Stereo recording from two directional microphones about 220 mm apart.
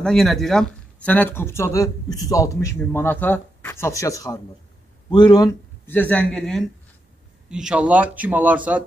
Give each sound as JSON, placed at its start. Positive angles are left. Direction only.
{"t": 0.0, "sound": "speech", "side_deg": 5}